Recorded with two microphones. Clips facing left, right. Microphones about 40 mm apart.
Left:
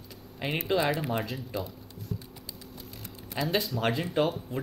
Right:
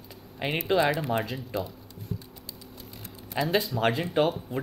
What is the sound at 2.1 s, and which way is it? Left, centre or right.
Typing, centre.